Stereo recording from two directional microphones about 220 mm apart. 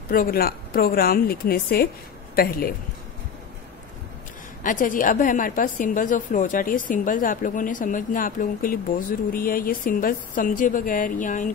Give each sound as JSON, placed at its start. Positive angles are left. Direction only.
{"t": 0.1, "sound": "a woman's voice", "side_deg": 40}
{"t": 4.6, "sound": "a woman's voice", "side_deg": 40}